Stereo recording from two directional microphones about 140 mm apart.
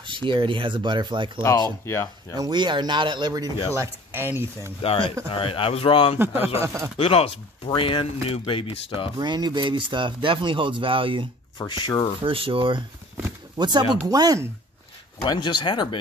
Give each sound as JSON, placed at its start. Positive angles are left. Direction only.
{"t": 0.0, "sound": "speech", "side_deg": -35}
{"t": 1.9, "sound": "speech", "side_deg": 20}
{"t": 2.3, "sound": "speech", "side_deg": -30}
{"t": 3.7, "sound": "speech", "side_deg": -15}
{"t": 4.8, "sound": "speech", "side_deg": 40}
{"t": 6.4, "sound": "speech", "side_deg": -20}
{"t": 7.0, "sound": "speech", "side_deg": 45}
{"t": 9.2, "sound": "speech", "side_deg": -30}
{"t": 11.5, "sound": "speech", "side_deg": 30}
{"t": 12.2, "sound": "speech", "side_deg": -40}
{"t": 15.2, "sound": "speech", "side_deg": 35}